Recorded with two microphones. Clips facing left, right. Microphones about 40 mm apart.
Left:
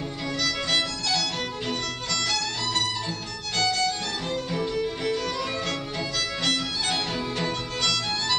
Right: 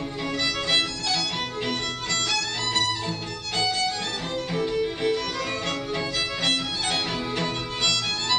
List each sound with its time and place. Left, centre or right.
0.7 s violin: centre
2.2 s music: centre